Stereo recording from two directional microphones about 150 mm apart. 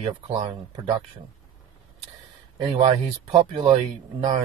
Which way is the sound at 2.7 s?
45° right (ahead or behind).